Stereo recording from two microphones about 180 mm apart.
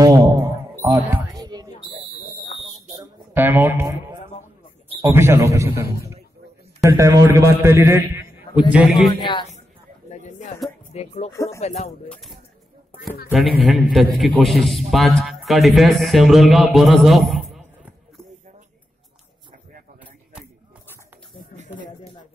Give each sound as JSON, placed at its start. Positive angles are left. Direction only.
{"t": 0.0, "sound": "music", "side_deg": -15}
{"t": 3.0, "sound": "music", "side_deg": -10}
{"t": 5.1, "sound": "a man's voice", "side_deg": -15}
{"t": 8.7, "sound": "a man's voice", "side_deg": 0}
{"t": 9.1, "sound": "speech", "side_deg": 25}
{"t": 10.0, "sound": "a sound", "side_deg": 40}
{"t": 10.9, "sound": "speech", "side_deg": 35}
{"t": 12.1, "sound": "a sound", "side_deg": 0}
{"t": 13.3, "sound": "a man's voice", "side_deg": 0}
{"t": 17.3, "sound": "a sound", "side_deg": 0}